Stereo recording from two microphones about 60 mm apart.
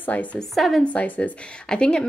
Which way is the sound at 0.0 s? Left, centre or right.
Left.